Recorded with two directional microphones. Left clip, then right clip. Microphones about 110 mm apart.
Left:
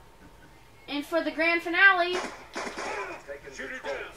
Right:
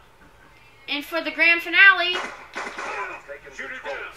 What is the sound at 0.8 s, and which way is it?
A woman's voice, 10° left (ahead or behind).